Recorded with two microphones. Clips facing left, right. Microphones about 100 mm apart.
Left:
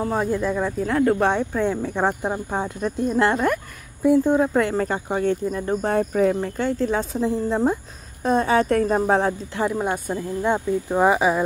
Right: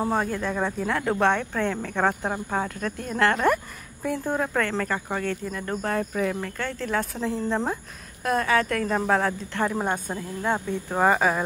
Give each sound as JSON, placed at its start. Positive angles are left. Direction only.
{"t": 0.0, "sound": "speech", "side_deg": 0}
{"t": 6.6, "sound": "speech", "side_deg": 15}
{"t": 8.2, "sound": "speech", "side_deg": 25}
{"t": 9.5, "sound": "speech", "side_deg": 10}